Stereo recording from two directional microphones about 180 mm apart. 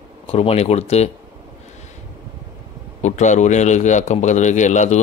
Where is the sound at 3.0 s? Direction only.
40° left (ahead or behind).